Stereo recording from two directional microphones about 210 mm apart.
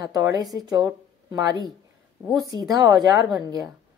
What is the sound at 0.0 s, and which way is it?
Speech, 15° right (ahead or behind).